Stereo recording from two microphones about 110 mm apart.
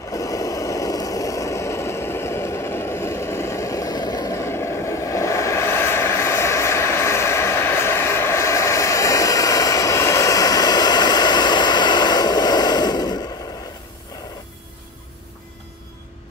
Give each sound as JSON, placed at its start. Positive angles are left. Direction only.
{"t": 0.1, "sound": "vehicle", "side_deg": 30}